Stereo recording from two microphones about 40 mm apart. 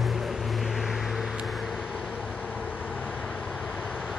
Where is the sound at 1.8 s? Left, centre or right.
Centre.